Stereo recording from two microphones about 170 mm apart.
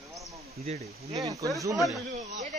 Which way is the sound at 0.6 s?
35° right (ahead or behind).